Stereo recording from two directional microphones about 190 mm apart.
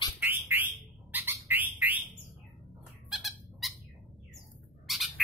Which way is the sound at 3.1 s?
Centre (ahead or behind).